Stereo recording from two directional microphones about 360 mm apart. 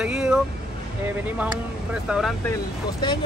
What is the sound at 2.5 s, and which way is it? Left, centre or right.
Speech, centre.